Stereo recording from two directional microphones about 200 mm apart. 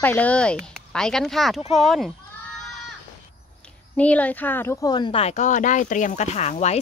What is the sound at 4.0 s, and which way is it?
Speech, 5° left (ahead or behind).